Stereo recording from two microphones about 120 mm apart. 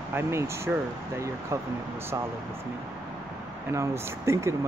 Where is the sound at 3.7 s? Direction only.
25° right (ahead or behind).